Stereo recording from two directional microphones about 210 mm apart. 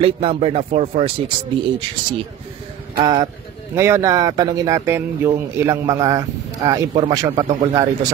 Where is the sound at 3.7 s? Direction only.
15° right (ahead or behind).